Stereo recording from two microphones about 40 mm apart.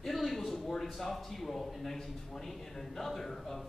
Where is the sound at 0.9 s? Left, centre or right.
Centre.